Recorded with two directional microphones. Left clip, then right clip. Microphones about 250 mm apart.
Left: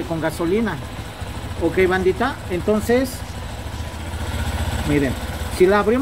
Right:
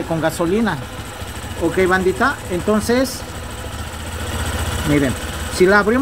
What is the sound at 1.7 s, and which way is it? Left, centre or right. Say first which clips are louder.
Speech: right 2 dB; centre.